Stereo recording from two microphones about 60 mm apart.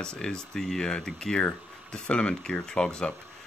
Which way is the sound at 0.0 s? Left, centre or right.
Centre.